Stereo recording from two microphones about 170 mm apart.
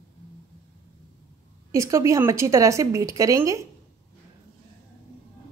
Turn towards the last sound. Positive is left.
turn(degrees=-20)  # may be behind; listen again after turning